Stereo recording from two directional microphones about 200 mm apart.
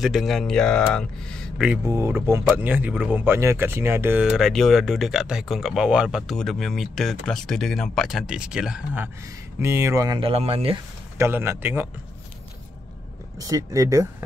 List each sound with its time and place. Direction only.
0.0 s speech: centre (ahead or behind)
1.9 s speech: 15° right (ahead or behind)
10.3 s speech: 30° right (ahead or behind)
11.1 s speech: 10° right (ahead or behind)
13.4 s speech: 15° right (ahead or behind)